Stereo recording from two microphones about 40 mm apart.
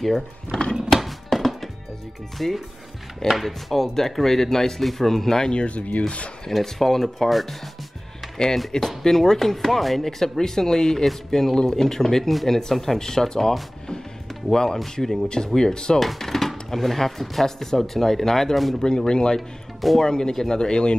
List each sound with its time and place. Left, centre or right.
0.0 s speech: centre
0.9 s music: centre
2.3 s speech: centre
5.5 s speech: left
5.8 s speech: left
6.5 s speech: centre
8.5 s speech: centre
16.0 s speech: centre